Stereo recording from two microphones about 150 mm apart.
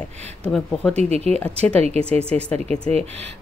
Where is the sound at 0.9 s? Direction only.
45° right (ahead or behind).